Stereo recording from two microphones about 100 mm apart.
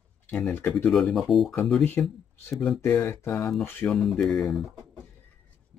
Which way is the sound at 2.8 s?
20° left (ahead or behind).